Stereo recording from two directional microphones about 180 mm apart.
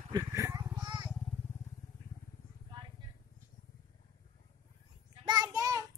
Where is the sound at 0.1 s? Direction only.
20° right (ahead or behind).